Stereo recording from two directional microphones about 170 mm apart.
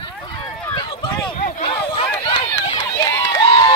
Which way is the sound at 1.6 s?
30° left (ahead or behind).